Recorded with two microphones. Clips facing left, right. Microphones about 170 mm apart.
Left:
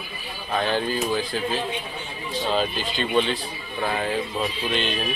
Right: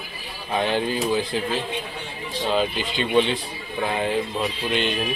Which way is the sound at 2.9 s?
20° right (ahead or behind).